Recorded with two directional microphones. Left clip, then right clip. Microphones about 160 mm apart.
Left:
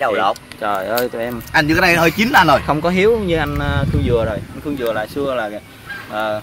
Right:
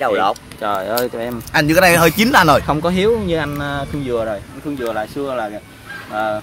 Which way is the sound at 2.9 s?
20° left (ahead or behind).